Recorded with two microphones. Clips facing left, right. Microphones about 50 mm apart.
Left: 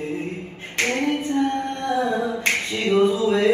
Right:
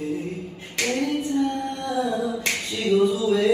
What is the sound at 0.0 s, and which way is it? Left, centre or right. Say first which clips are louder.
A capella: even; left.